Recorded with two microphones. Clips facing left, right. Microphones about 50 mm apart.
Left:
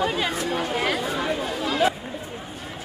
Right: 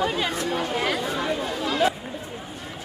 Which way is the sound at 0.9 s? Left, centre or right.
Centre.